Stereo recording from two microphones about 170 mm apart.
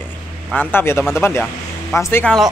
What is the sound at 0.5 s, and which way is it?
Speech, 10° left (ahead or behind).